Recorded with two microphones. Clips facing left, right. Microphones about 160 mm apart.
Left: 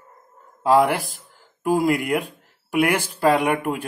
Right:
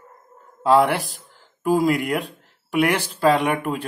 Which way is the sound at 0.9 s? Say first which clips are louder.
Right 1 dB; 45° left (ahead or behind).